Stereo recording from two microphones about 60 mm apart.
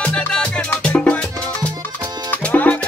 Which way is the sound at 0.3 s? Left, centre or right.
Centre.